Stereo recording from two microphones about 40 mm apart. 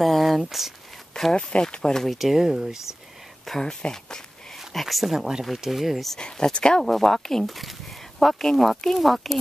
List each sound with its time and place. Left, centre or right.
0.0 s speech: centre
1.3 s speech: left
1.8 s speech: centre
2.0 s speech: centre
3.6 s speech: centre
4.7 s speech: centre
6.1 s speech: centre
6.8 s speech: centre